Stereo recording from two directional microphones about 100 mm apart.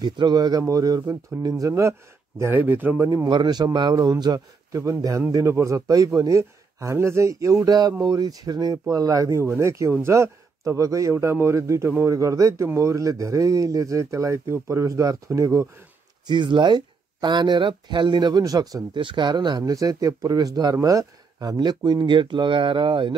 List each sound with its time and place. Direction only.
0.0 s speech: 45° right (ahead or behind); by 2.5 s 30° right (ahead or behind)
2.5 s a man's voice: 20° right (ahead or behind)
3.3 s a man's voice: 45° right (ahead or behind)
16.3 s speech: 50° right (ahead or behind)
18.9 s speech: 50° right (ahead or behind)